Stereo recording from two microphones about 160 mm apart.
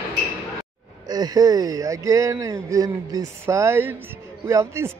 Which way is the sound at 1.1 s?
25° right (ahead or behind).